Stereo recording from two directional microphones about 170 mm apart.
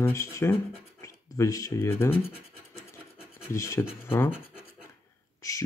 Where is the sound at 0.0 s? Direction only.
15° left (ahead or behind).